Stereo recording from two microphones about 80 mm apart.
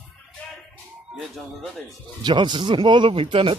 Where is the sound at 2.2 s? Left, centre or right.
Right.